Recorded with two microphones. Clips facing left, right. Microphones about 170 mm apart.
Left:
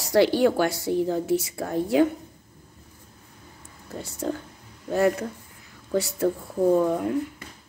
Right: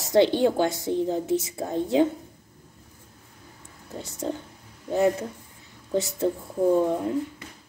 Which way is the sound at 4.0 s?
20° right (ahead or behind).